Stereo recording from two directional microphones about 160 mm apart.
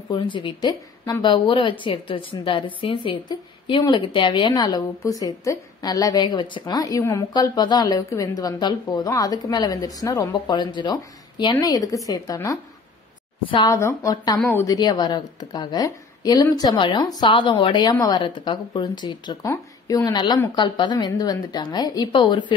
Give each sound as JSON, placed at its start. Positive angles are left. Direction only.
{"t": 0.1, "sound": "a woman's voice", "side_deg": 30}
{"t": 13.7, "sound": "a woman's voice", "side_deg": 20}